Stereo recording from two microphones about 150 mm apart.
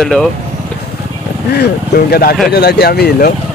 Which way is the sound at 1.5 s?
90° left.